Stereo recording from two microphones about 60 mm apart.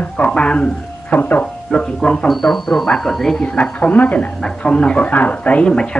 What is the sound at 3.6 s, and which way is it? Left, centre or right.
Speech, centre.